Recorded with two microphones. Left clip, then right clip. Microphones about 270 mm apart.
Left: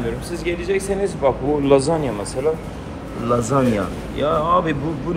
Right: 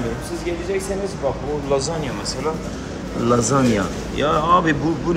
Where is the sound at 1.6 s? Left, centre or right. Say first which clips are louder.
Left 6 dB; left.